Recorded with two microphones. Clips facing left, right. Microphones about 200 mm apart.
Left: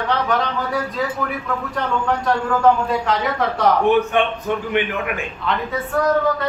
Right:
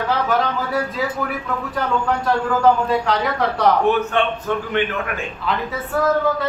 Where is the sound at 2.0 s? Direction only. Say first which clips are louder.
Even; centre (ahead or behind).